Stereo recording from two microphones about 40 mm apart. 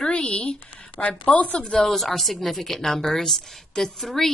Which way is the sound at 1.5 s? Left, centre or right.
Centre.